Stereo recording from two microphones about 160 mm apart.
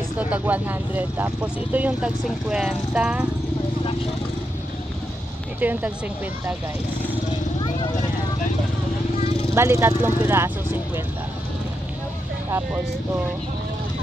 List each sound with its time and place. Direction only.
0.2 s speech: 10° right (ahead or behind)
5.6 s speech: 10° right (ahead or behind)
9.5 s speech: 15° right (ahead or behind)
12.4 s speech: 15° right (ahead or behind)